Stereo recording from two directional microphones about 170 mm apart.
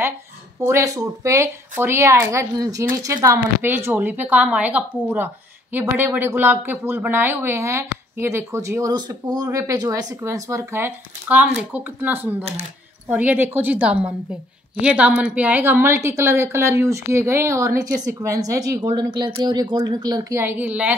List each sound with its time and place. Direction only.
0.6 s speech: 15° right (ahead or behind)